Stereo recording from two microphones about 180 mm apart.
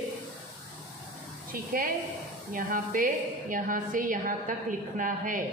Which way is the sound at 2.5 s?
50° right (ahead or behind).